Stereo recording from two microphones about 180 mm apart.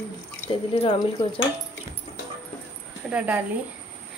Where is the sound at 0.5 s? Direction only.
30° left (ahead or behind).